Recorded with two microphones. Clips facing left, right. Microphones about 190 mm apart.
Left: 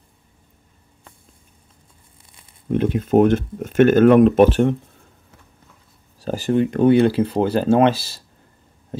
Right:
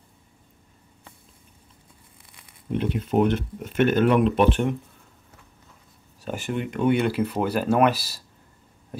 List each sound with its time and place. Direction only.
2.7 s speech: 45° left (ahead or behind)
6.2 s speech: 35° left (ahead or behind)